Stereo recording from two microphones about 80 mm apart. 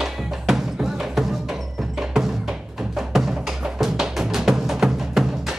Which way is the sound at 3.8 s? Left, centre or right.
Centre.